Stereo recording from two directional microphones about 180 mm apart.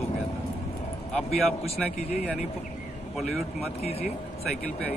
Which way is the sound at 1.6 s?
35° left (ahead or behind).